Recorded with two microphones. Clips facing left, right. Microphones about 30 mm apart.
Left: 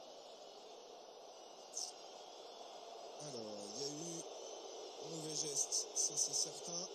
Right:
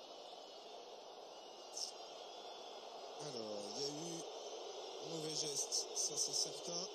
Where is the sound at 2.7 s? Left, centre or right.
Right.